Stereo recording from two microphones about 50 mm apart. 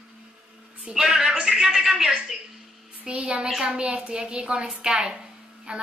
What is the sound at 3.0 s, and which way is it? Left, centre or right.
Speech, right.